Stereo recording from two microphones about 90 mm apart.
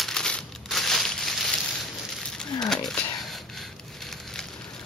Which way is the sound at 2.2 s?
10° left (ahead or behind).